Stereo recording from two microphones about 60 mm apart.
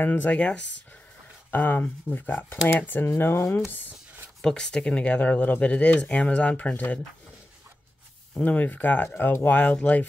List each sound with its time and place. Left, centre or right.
0.0 s speech: left
1.5 s speech: left
4.4 s speech: centre; by 7.0 s left
8.4 s speech: left